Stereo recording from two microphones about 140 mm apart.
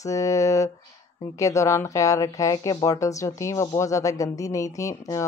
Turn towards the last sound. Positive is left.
turn(degrees=25)  # may be behind; listen again after turning